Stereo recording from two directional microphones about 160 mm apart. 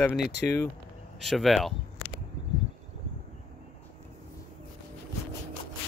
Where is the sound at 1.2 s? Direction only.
Centre (ahead or behind).